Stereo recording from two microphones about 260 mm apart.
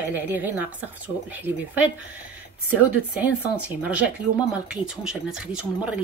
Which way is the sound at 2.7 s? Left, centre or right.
Centre.